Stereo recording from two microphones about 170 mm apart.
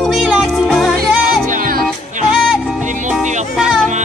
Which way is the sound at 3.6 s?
5° right (ahead or behind).